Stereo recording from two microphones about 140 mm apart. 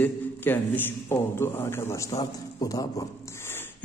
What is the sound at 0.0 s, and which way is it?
Speech, 15° left (ahead or behind).